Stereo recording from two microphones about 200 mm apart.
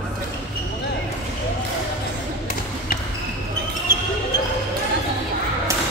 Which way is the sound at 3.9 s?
45° right (ahead or behind).